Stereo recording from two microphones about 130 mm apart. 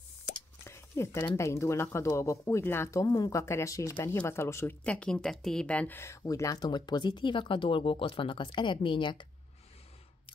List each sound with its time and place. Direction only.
0.7 s speech: 20° left (ahead or behind)
4.8 s speech: 10° left (ahead or behind); by 9.3 s 35° left (ahead or behind)